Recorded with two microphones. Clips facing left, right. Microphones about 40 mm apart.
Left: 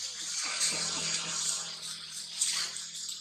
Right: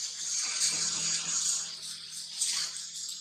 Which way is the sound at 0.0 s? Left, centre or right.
Centre.